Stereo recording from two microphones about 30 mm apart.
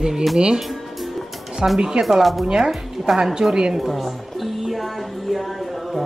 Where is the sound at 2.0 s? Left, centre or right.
Centre.